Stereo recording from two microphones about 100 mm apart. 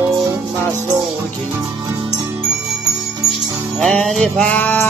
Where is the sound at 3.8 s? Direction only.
Centre (ahead or behind); by 4.8 s 15° left (ahead or behind).